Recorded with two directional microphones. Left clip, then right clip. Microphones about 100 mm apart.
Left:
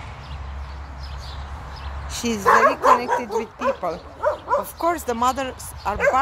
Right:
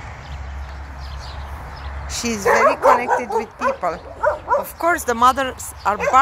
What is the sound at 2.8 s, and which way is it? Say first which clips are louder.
Dog: right 2 dB; 45° left (ahead or behind).